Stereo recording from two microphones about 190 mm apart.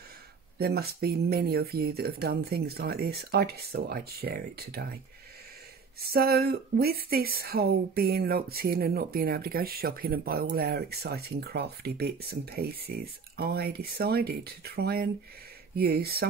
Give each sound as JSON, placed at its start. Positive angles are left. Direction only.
{"t": 0.6, "sound": "speech", "side_deg": -55}
{"t": 5.9, "sound": "speech", "side_deg": -55}